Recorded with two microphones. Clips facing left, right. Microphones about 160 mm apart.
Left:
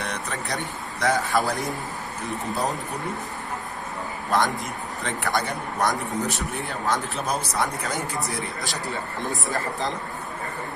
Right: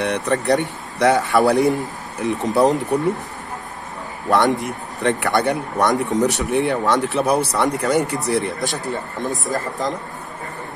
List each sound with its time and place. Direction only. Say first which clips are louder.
0.0 s speech: right 11 dB; 65° right (ahead or behind)
4.3 s speech: right 7 dB; 70° right (ahead or behind)
9.4 s speech: right 4 dB; 40° right (ahead or behind)